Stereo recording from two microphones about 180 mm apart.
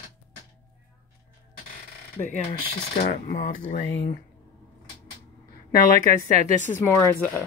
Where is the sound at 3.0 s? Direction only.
45° left (ahead or behind).